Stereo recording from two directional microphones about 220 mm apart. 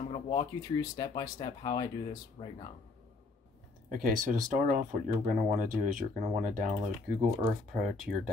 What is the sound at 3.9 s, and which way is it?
Speech, 35° right (ahead or behind).